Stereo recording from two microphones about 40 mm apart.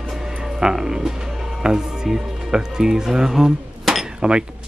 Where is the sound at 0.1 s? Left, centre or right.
Centre.